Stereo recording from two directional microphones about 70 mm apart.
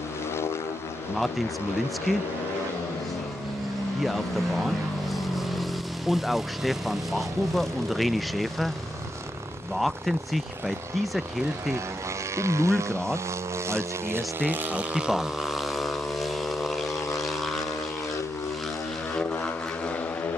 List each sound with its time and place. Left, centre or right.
4.0 s speech: centre
9.8 s speech: centre
12.4 s speech: right
14.4 s speech: right
14.8 s vehicle: centre
19.3 s vehicle: centre